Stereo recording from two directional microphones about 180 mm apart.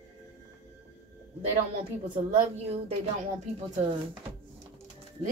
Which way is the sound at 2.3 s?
35° right (ahead or behind).